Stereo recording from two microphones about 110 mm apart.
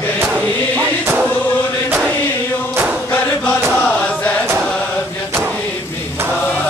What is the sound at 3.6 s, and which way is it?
Chant, 10° left (ahead or behind).